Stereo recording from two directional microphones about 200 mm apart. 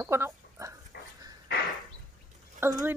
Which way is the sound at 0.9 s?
55° left (ahead or behind).